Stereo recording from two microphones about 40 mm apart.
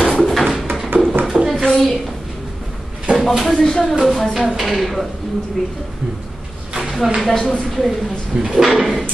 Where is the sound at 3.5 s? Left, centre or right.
Centre.